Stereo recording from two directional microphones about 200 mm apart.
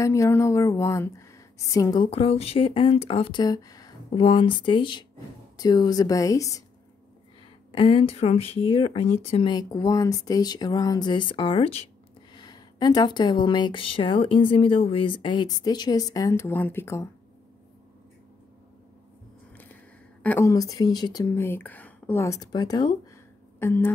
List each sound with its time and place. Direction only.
0.0 s speech: 15° left (ahead or behind)
7.7 s speech: 25° left (ahead or behind)
19.5 s a sound: 10° left (ahead or behind)
20.2 s speech: 15° left (ahead or behind)